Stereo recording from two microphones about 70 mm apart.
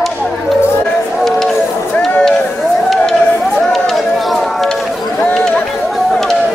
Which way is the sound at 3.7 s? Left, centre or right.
Centre.